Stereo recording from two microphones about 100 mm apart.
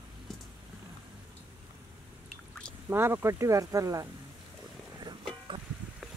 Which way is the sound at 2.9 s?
25° right (ahead or behind).